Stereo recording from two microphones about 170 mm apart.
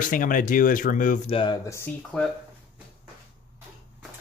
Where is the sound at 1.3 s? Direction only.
30° left (ahead or behind).